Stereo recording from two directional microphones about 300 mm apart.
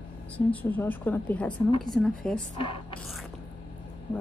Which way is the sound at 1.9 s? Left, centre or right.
Centre.